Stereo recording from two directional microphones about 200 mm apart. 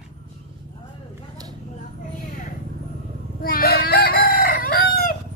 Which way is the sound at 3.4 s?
50° left (ahead or behind).